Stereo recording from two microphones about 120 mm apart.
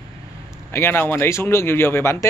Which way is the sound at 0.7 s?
20° left (ahead or behind).